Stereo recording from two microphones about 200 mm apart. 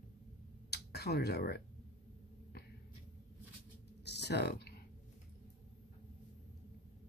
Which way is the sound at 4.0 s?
55° left (ahead or behind).